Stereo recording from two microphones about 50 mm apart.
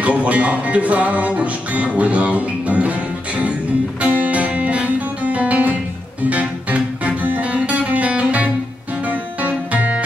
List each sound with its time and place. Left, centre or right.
0.0 s music: right